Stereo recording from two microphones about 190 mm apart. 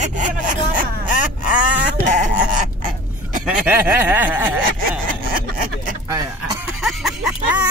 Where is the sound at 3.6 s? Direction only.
10° right (ahead or behind).